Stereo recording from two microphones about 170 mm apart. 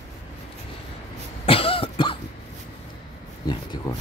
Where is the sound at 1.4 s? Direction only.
35° left (ahead or behind).